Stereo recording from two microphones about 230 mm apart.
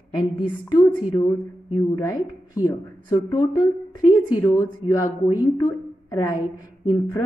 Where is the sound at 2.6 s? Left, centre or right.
Centre.